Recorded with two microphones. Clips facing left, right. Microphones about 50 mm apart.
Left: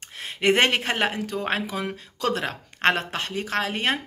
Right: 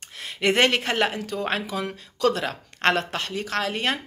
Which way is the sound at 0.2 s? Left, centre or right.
Left.